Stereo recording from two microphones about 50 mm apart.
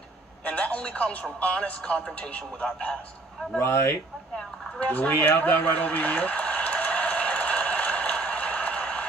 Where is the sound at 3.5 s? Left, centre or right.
Left.